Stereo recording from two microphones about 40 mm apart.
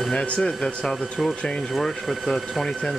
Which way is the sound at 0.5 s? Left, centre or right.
Centre.